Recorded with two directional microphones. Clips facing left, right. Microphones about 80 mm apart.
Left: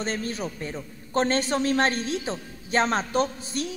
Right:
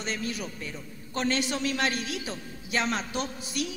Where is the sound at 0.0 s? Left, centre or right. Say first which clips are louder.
Left 4 dB; left.